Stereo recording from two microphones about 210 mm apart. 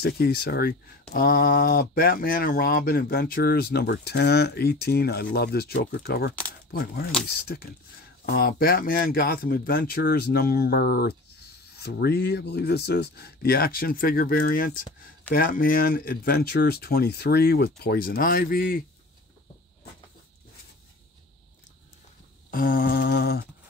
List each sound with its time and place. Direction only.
0.2 s speech: 45° left (ahead or behind)
22.5 s speech: 45° left (ahead or behind)